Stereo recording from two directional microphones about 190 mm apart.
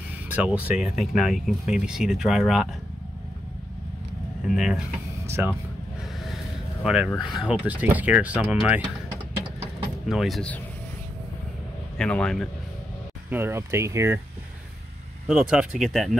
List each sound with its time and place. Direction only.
0.3 s speech: 10° right (ahead or behind)
4.6 s speech: 5° right (ahead or behind)
5.2 s speech: 15° right (ahead or behind)
6.8 s speech: centre (ahead or behind)
10.0 s speech: centre (ahead or behind)
12.0 s speech: 5° left (ahead or behind)
13.3 s speech: 10° right (ahead or behind)
15.2 s speech: 5° right (ahead or behind)